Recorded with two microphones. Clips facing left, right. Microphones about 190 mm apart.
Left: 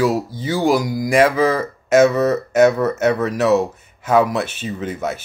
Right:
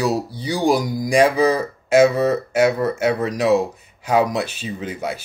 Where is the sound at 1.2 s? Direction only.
15° right (ahead or behind).